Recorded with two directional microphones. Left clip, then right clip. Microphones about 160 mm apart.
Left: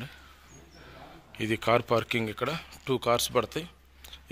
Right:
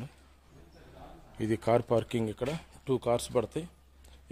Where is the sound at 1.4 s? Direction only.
25° right (ahead or behind).